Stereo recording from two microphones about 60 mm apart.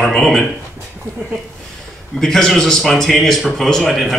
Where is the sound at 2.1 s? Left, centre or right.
Centre.